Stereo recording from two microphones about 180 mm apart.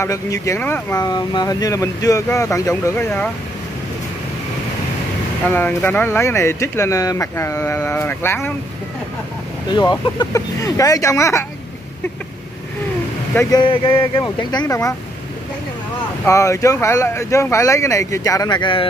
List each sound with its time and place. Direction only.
0.0 s speech: 15° left (ahead or behind)
5.5 s speech: 10° left (ahead or behind)
9.7 s speech: 25° left (ahead or behind)
13.3 s speech: 15° left (ahead or behind)
16.3 s speech: 15° left (ahead or behind)